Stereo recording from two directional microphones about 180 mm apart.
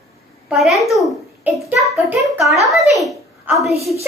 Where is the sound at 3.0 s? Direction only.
20° right (ahead or behind).